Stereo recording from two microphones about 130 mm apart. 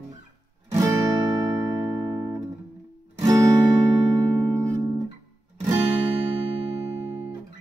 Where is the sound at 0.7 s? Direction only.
25° right (ahead or behind).